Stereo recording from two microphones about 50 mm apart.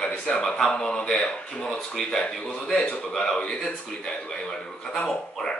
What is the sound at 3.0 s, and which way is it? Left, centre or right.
Speech, centre.